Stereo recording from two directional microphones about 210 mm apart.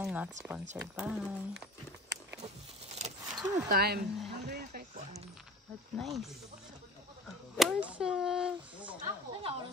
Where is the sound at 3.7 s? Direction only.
45° right (ahead or behind).